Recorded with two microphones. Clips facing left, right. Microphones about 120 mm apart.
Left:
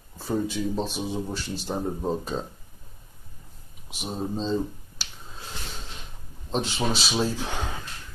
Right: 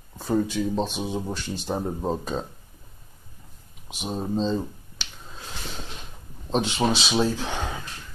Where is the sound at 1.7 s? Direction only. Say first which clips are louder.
Right 1 dB; 20° right (ahead or behind).